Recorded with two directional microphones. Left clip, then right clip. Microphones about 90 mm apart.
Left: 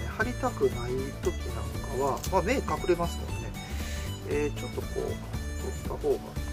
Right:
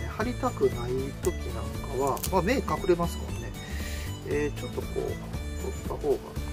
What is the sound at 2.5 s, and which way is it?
Speech, 20° right (ahead or behind).